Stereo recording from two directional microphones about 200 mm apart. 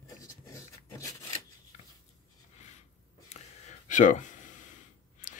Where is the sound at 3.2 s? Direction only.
40° left (ahead or behind).